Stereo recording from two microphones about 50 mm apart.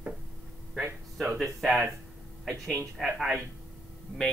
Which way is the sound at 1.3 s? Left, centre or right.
Centre.